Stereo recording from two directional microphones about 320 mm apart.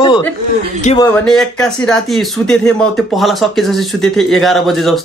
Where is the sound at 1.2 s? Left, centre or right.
Centre.